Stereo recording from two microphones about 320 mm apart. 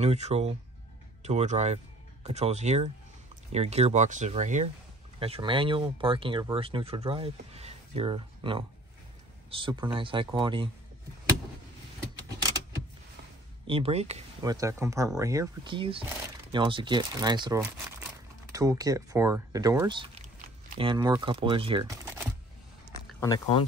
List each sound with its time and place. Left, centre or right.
0.0 s speech: centre
13.7 s speech: centre